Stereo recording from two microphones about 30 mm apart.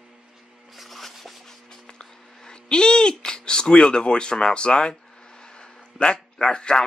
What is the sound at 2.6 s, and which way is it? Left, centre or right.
Speech, left.